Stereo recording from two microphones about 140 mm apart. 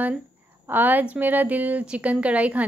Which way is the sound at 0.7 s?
15° right (ahead or behind).